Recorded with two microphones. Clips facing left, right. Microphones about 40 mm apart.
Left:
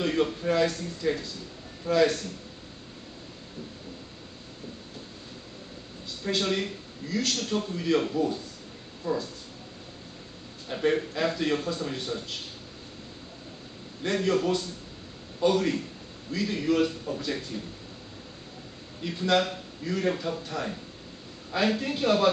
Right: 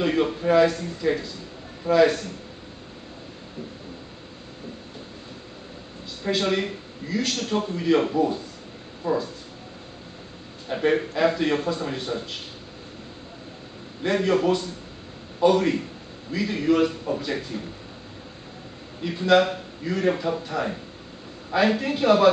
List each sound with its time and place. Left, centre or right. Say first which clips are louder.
0.0 s a man's voice: right 4 dB; centre
6.2 s a man's voice: right 4 dB; centre
10.7 s a man's voice: right 4 dB; centre
14.0 s a man's voice: right 4 dB; centre
18.9 s a man's voice: right 6 dB; centre